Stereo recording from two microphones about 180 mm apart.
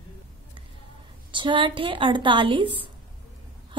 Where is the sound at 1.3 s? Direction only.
25° right (ahead or behind).